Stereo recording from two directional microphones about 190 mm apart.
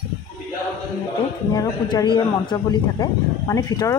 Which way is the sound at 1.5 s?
20° left (ahead or behind).